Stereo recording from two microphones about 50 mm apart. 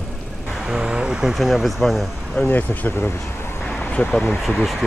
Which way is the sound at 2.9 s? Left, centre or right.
Left.